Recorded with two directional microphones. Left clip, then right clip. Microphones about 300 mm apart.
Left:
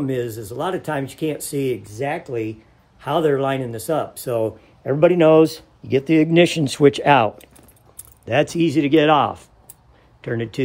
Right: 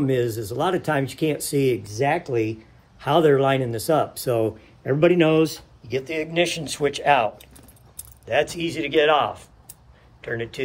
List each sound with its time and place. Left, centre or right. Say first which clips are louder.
0.0 s speech: right 2 dB; centre; by 7.2 s left
8.3 s speech: left 4 dB; left